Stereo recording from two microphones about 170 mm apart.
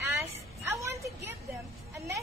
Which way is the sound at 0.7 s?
15° right (ahead or behind).